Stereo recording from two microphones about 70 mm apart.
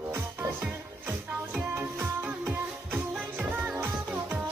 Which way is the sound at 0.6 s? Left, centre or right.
Right.